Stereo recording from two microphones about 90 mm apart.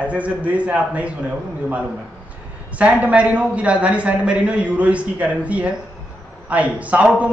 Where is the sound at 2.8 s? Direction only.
15° right (ahead or behind).